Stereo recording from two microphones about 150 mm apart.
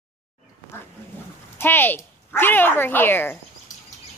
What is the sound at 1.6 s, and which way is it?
Speech, 15° left (ahead or behind).